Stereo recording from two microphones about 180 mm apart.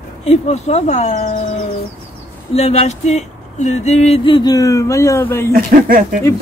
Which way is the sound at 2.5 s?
35° left (ahead or behind).